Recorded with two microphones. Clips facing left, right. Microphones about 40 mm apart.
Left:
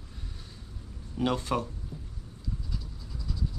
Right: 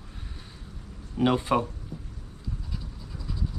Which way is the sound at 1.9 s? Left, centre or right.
Right.